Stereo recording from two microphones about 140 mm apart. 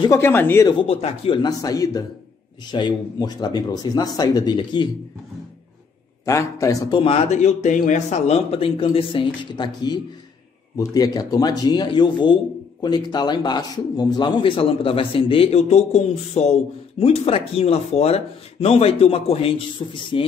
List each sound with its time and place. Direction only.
0.1 s speech: 15° left (ahead or behind)
0.7 s a man's voice: 40° left (ahead or behind)
6.2 s speech: 20° left (ahead or behind)
7.0 s a man's voice: 45° left (ahead or behind)